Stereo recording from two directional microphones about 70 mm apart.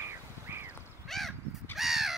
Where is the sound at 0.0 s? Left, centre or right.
Right.